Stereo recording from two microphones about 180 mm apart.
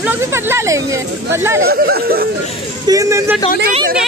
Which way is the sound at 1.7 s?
60° right (ahead or behind).